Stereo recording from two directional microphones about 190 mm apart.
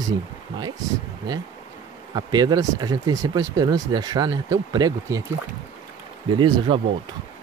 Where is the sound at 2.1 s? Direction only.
20° right (ahead or behind).